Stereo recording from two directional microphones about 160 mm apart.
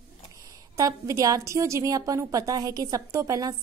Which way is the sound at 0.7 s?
20° right (ahead or behind).